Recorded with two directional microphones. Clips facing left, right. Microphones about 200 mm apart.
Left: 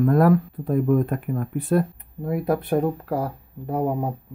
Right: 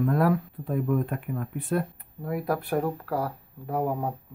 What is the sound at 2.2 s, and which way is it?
Speech, 25° left (ahead or behind).